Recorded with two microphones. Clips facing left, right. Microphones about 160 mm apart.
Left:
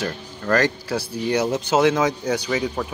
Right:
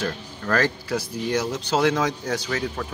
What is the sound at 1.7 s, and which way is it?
Speech, 10° left (ahead or behind).